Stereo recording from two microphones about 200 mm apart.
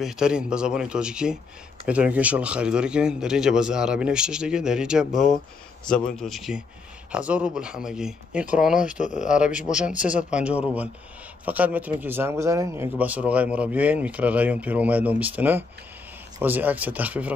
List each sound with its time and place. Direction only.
0.0 s speech: 5° right (ahead or behind)
8.9 s speech: 40° left (ahead or behind)
9.2 s speech: 5° right (ahead or behind)